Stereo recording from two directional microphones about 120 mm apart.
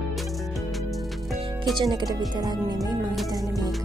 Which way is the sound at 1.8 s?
35° right (ahead or behind).